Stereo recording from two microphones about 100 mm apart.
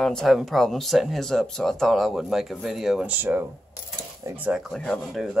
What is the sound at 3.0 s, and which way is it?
Speech, 20° right (ahead or behind).